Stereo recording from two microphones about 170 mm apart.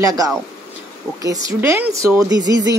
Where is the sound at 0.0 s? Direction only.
20° right (ahead or behind).